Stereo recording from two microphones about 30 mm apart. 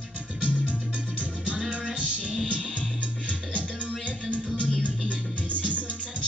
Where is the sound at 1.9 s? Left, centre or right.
Right.